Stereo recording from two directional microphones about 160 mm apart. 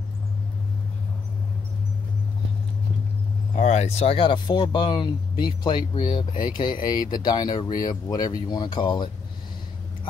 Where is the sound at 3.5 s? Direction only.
45° left (ahead or behind).